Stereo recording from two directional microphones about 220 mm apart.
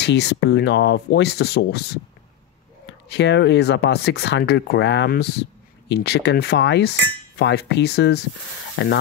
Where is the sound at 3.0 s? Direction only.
50° left (ahead or behind).